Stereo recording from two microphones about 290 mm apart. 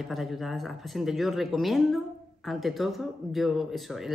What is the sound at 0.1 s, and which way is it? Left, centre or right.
Speech, centre.